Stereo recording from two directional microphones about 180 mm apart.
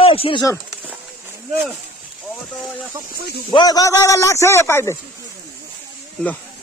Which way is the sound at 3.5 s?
20° left (ahead or behind).